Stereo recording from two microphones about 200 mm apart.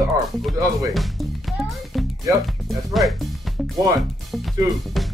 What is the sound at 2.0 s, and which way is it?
Speech, centre (ahead or behind).